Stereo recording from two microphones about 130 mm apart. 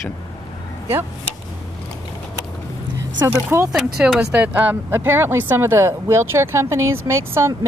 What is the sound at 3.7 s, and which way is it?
Speech, 5° right (ahead or behind).